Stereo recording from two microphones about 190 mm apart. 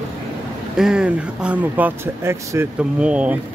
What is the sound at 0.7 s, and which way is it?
Speech, 5° right (ahead or behind).